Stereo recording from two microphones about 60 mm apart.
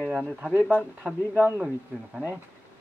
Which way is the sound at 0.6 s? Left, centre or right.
Centre.